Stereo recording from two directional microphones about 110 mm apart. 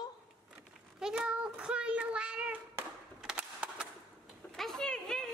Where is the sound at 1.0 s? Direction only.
5° right (ahead or behind).